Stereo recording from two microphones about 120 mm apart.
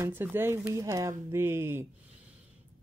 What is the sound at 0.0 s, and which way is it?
Speech, 15° right (ahead or behind).